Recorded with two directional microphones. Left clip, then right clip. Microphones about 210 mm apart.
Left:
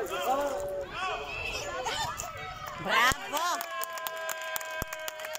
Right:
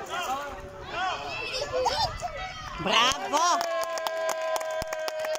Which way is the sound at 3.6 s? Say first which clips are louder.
Right 7 dB; 25° right (ahead or behind).